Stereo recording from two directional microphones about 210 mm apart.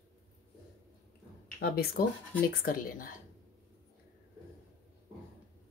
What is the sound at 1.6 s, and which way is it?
Speech, 45° left (ahead or behind).